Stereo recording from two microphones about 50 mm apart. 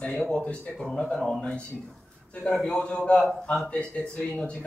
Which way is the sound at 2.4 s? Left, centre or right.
Centre.